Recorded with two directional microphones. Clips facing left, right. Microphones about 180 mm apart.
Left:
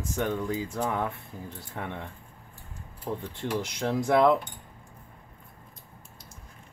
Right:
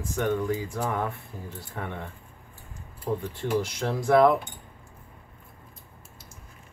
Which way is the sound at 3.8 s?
20° left (ahead or behind).